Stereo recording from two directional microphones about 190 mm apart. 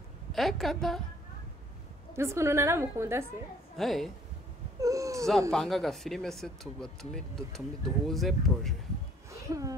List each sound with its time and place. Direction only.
0.3 s speech: centre (ahead or behind)
2.1 s a woman's voice: 15° right (ahead or behind)
3.7 s speech: centre (ahead or behind)
4.7 s speech: 15° right (ahead or behind)
5.5 s speech: centre (ahead or behind)
9.3 s a sound: 15° right (ahead or behind)